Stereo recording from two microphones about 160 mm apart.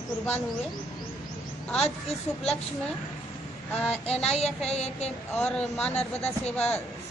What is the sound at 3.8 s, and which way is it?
Child singing, 40° left (ahead or behind).